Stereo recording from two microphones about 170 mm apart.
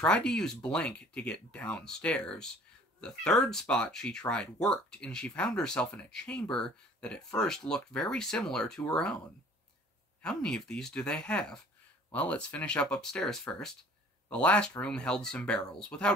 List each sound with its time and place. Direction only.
0.0 s speech: 5° left (ahead or behind)
10.2 s speech: 5° left (ahead or behind)